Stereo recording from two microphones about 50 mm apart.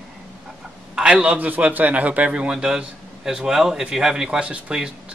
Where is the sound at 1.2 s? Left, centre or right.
Right.